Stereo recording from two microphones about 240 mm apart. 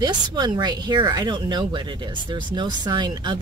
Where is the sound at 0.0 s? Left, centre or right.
Centre.